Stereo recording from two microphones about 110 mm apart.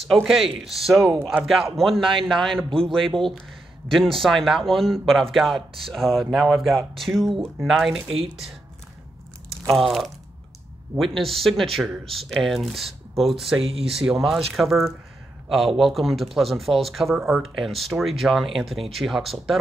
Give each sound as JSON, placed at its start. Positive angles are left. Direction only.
{"t": 0.1, "sound": "a man's voice", "side_deg": 0}
{"t": 9.8, "sound": "a man's voice", "side_deg": 0}
{"t": 13.6, "sound": "speech", "side_deg": -60}
{"t": 13.8, "sound": "a man's voice", "side_deg": -5}